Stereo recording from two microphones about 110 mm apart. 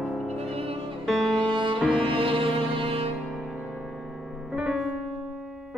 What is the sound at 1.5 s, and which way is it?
Music, 45° right (ahead or behind).